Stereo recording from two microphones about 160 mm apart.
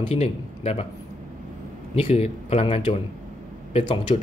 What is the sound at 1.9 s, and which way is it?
Speech, 40° left (ahead or behind).